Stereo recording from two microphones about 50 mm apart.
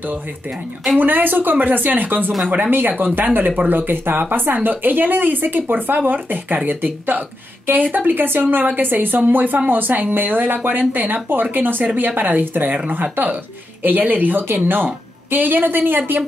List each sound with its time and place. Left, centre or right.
0.9 s speech: right
2.4 s speech: right
3.2 s speech: right